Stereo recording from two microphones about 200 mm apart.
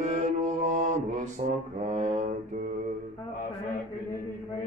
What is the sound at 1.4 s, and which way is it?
Mantra, 40° right (ahead or behind).